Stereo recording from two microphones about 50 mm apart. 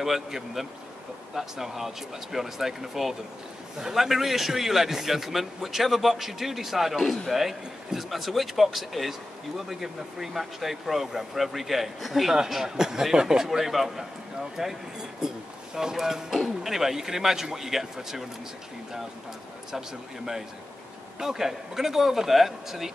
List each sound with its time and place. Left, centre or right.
0.0 s a man's voice: centre
21.2 s speech: centre